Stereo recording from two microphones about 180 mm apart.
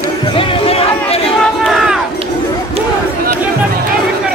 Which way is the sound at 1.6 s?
Centre (ahead or behind).